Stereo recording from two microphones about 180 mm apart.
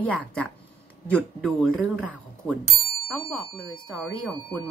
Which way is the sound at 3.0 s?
5° left (ahead or behind).